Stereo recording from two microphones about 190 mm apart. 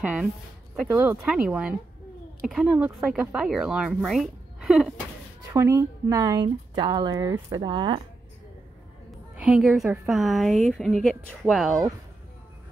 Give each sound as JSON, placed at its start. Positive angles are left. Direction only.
{"t": 0.0, "sound": "a woman's voice", "side_deg": -5}
{"t": 1.2, "sound": "a woman's voice", "side_deg": 0}
{"t": 5.5, "sound": "speech", "side_deg": -15}
{"t": 9.1, "sound": "a woman's voice", "side_deg": -5}